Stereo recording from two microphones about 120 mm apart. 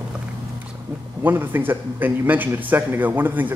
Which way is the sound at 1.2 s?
20° right (ahead or behind).